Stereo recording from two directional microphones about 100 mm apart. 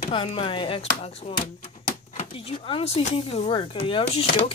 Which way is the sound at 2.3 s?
70° left (ahead or behind).